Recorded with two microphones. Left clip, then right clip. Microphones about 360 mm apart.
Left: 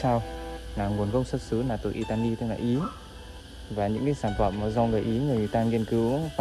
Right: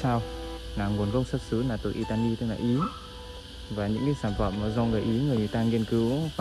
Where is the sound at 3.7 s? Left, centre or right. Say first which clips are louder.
Left 2 dB; left.